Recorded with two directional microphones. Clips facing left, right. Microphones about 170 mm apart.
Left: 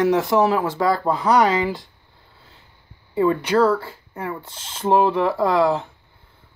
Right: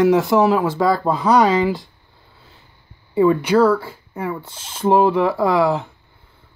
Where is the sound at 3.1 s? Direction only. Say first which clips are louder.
Right 4 dB; 15° right (ahead or behind).